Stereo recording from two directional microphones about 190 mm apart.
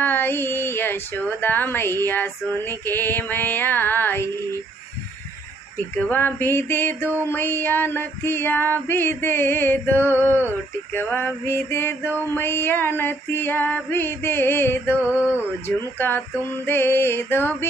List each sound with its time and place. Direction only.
0.0 s speech: 10° left (ahead or behind)
6.0 s speech: 10° left (ahead or behind)